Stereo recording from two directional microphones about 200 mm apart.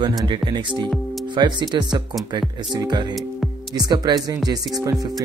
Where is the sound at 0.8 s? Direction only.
Centre (ahead or behind).